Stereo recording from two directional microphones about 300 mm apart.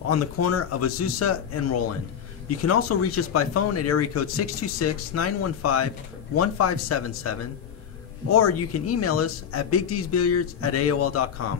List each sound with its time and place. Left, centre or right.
0.1 s speech: left